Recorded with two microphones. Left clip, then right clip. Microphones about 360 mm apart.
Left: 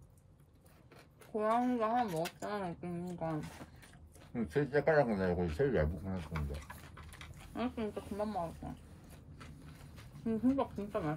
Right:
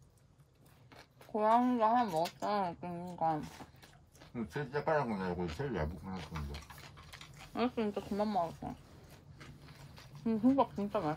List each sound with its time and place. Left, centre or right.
0.9 s speech: centre
4.3 s speech: centre
6.1 s speech: right
10.2 s speech: centre